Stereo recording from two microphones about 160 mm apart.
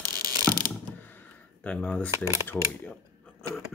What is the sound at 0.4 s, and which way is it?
Ratchet, 25° right (ahead or behind).